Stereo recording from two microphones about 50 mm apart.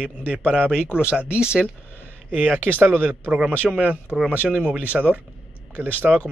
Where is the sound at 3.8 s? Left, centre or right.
Right.